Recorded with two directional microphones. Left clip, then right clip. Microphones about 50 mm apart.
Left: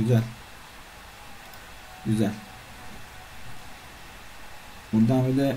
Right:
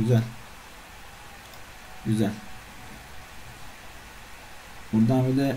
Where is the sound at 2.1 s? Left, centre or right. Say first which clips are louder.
Even; left.